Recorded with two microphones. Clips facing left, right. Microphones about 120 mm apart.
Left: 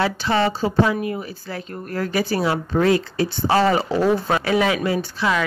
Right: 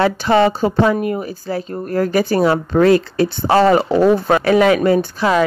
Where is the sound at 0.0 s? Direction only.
50° right (ahead or behind).